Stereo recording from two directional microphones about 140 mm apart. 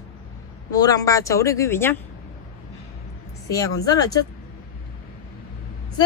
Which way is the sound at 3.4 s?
25° left (ahead or behind).